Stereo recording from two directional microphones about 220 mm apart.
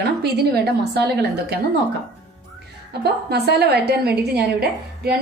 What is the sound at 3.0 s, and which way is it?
A woman's voice, 50° right (ahead or behind).